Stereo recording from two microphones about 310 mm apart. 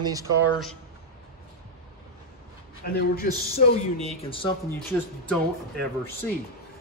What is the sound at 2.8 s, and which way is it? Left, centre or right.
Speech, left.